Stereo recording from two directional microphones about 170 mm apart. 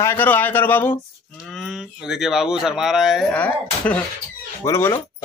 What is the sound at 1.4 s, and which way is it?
Speech, centre (ahead or behind).